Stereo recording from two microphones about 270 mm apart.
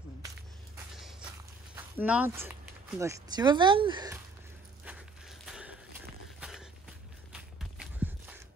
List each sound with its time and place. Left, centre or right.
1.8 s speech: centre
4.8 s a sound: centre
7.3 s walk: centre